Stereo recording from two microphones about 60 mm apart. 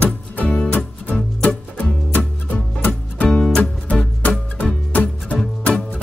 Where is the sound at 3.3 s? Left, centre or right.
Centre.